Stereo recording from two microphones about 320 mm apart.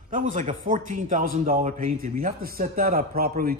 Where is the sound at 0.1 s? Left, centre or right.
Right.